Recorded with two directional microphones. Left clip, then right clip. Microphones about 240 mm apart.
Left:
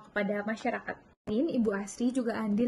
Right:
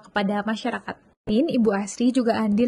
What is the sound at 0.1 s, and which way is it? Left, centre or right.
Speech, right.